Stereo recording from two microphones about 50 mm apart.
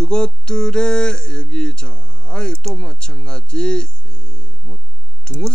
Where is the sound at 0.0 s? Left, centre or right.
Centre.